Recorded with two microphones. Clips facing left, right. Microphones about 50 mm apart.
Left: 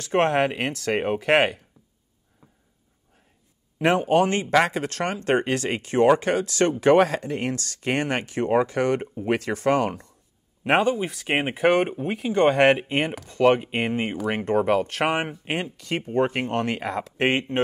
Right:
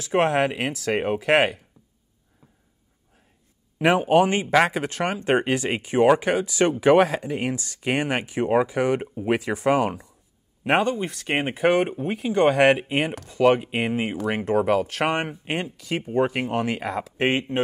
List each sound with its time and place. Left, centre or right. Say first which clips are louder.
0.0 s speech: even; centre
3.7 s speech: right 2 dB; centre
17.2 s speech: even; left